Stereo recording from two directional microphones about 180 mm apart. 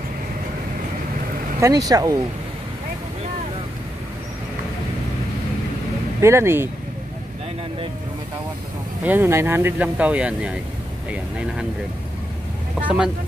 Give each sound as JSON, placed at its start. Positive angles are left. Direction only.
{"t": 1.6, "sound": "speech", "side_deg": -20}
{"t": 6.2, "sound": "speech", "side_deg": -15}
{"t": 9.0, "sound": "speech", "side_deg": -10}
{"t": 12.8, "sound": "speech", "side_deg": -5}